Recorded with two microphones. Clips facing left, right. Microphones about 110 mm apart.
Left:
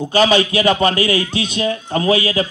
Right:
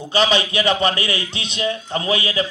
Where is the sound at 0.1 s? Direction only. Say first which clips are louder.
Left 4 dB; 40° left (ahead or behind).